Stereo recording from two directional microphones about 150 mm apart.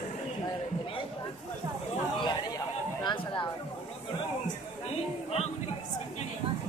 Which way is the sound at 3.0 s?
30° left (ahead or behind).